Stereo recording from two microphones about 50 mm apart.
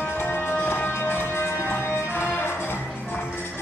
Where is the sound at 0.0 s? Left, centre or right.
Left.